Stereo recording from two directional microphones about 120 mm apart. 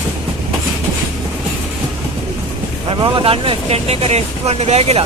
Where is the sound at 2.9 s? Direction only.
45° right (ahead or behind); by 5.0 s 60° right (ahead or behind).